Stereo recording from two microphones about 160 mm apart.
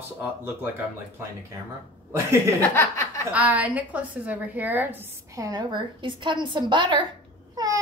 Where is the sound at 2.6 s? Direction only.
15° left (ahead or behind).